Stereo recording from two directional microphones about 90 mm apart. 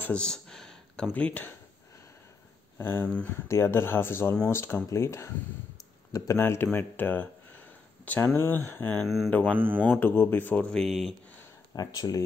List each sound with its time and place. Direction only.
0.0 s a sound: 10° left (ahead or behind)
1.1 s speech: 15° left (ahead or behind)
2.8 s speech: 25° left (ahead or behind)
9.0 s speech: centre (ahead or behind)
9.3 s speech: 20° left (ahead or behind); by 11.1 s centre (ahead or behind)
11.7 s speech: 45° left (ahead or behind)